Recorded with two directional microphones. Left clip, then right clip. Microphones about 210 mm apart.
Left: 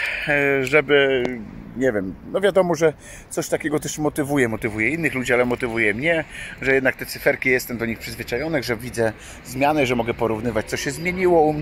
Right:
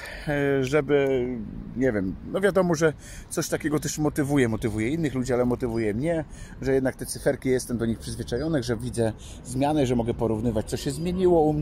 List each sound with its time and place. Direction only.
0.3 s a man's voice: 5° left (ahead or behind)
7.4 s a man's voice: 10° right (ahead or behind)